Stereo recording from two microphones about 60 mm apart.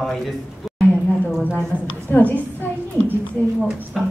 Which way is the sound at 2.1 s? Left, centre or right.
Left.